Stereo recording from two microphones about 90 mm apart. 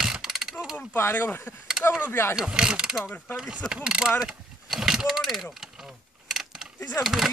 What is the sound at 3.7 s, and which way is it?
Speech, 10° right (ahead or behind).